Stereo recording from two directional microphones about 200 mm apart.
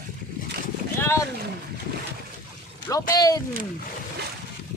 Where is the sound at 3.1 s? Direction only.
20° left (ahead or behind).